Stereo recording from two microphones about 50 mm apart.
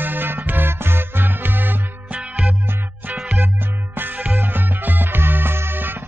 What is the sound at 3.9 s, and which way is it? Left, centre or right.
Music, right.